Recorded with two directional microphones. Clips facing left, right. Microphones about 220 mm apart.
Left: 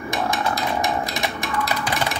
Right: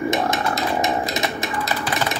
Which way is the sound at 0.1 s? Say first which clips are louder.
Right 2 dB; 20° right (ahead or behind).